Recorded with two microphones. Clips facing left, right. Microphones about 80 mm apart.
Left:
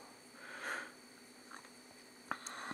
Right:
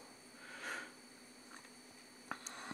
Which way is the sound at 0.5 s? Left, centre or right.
Left.